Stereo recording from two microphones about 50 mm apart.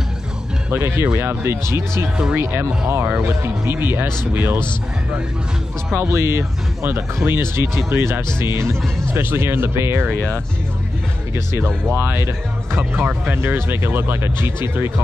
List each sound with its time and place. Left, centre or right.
0.7 s speech: right
2.3 s speech: right
6.1 s speech: right
11.5 s speech: right